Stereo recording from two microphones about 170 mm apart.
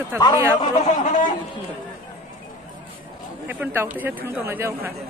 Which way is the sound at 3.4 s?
10° right (ahead or behind).